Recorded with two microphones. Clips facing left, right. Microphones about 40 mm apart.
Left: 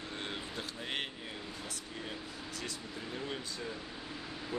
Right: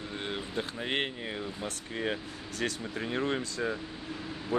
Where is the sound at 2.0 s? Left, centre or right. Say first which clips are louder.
Right 11 dB; right.